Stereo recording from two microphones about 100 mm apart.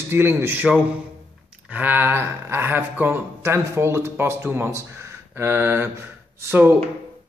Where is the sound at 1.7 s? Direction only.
20° right (ahead or behind).